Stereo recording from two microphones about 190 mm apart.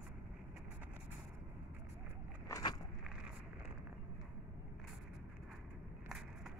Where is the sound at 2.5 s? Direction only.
15° left (ahead or behind).